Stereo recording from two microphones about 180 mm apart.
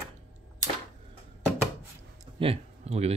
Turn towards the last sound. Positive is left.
turn(degrees=-35)  # may be behind; listen again after turning